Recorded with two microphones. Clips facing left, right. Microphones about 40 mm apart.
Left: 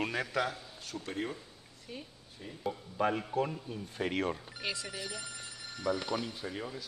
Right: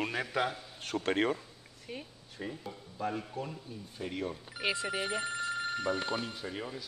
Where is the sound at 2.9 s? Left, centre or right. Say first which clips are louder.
Left 5 dB; left.